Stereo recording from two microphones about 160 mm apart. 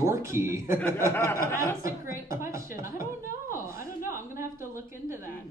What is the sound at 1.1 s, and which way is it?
Speech, 15° left (ahead or behind).